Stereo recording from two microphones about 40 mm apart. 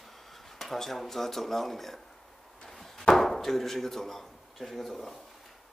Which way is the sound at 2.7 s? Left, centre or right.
Centre.